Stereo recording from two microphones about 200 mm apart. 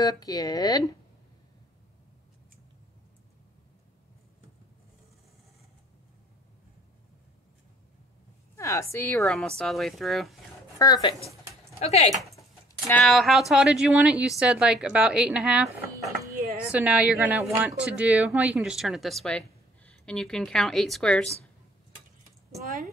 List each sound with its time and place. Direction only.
0.0 s speech: 20° left (ahead or behind)
8.5 s a woman's voice: 15° left (ahead or behind)
9.2 s a woman's voice: centre (ahead or behind)
10.8 s speech: 20° left (ahead or behind)
11.8 s speech: 30° left (ahead or behind)
12.8 s a woman's voice: 5° left (ahead or behind)
16.7 s a woman's voice: 5° right (ahead or behind)